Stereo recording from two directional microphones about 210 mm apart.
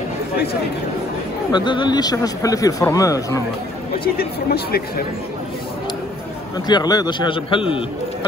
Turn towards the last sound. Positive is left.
turn(degrees=25)  # may be behind; listen again after turning